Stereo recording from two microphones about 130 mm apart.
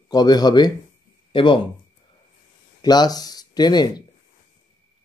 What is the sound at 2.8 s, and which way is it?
Speech, 30° left (ahead or behind).